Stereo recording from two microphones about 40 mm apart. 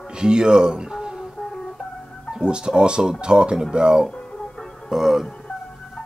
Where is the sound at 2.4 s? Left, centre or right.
Right.